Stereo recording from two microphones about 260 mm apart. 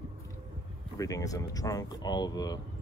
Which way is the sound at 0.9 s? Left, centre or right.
Centre.